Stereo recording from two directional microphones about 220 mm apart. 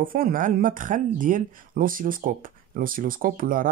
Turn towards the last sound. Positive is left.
turn(degrees=-40)  # may be behind; listen again after turning